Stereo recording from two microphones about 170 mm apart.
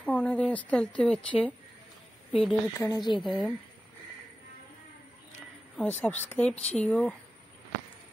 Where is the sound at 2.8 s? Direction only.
20° left (ahead or behind).